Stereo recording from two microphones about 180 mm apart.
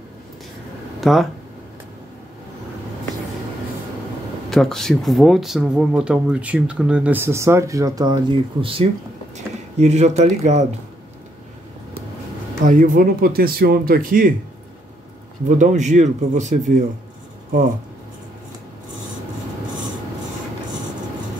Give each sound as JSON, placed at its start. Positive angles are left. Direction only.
{"t": 1.0, "sound": "speech", "side_deg": 0}
{"t": 4.5, "sound": "speech", "side_deg": 0}
{"t": 12.6, "sound": "speech", "side_deg": -50}
{"t": 15.4, "sound": "speech", "side_deg": -40}